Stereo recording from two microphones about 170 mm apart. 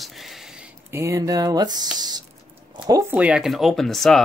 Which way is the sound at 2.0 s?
25° right (ahead or behind).